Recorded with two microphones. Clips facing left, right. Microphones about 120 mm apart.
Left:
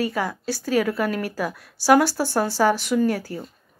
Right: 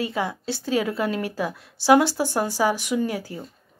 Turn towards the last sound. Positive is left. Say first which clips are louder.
# left 4 dB
turn(degrees=-20)  # may be behind; listen again after turning